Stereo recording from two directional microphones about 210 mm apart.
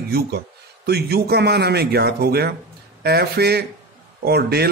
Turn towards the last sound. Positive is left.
turn(degrees=-50)  # may be behind; listen again after turning